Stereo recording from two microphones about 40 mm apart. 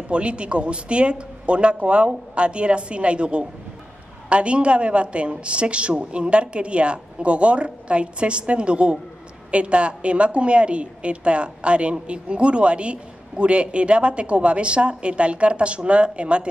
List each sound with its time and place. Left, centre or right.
0.1 s a woman's voice: right